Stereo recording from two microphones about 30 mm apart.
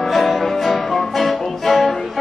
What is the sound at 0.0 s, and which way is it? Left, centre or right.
Music, centre.